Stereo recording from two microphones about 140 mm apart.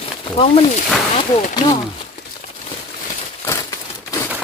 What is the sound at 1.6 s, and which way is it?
Speech, 30° left (ahead or behind).